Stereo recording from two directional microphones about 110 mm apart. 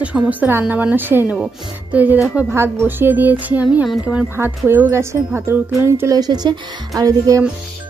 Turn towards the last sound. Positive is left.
turn(degrees=-30)  # may be behind; listen again after turning